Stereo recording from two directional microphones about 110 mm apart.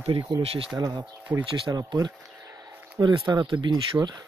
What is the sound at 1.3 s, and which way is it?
Speech, 15° right (ahead or behind).